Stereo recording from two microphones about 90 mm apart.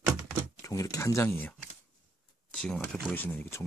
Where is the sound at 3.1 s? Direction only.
20° left (ahead or behind).